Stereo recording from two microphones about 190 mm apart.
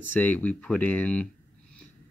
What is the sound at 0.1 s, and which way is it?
Speech, 10° left (ahead or behind).